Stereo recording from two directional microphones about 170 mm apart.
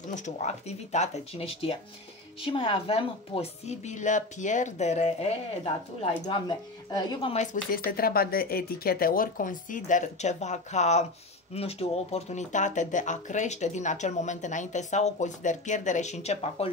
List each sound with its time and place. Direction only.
0.1 s a woman's voice: 45° left (ahead or behind)
6.2 s speech: 25° left (ahead or behind)
7.7 s speech: 60° left (ahead or behind); by 16.7 s 35° left (ahead or behind)